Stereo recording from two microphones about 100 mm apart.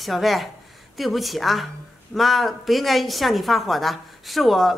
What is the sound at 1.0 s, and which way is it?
A woman's voice, centre (ahead or behind).